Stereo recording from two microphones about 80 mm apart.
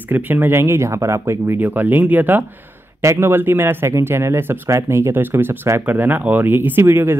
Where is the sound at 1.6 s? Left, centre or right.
Right.